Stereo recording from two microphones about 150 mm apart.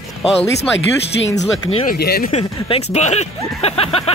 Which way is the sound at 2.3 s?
40° left (ahead or behind).